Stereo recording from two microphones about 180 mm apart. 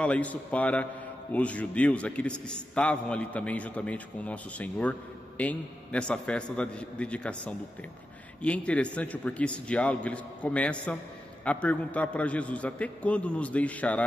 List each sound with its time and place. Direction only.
0.0 s a man's voice: 5° left (ahead or behind)